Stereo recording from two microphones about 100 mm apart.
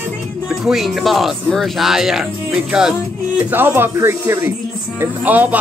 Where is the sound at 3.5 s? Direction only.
20° right (ahead or behind).